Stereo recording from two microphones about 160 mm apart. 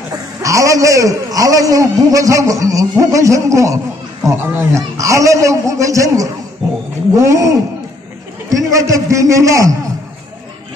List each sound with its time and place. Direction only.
0.4 s a man's voice: 20° right (ahead or behind)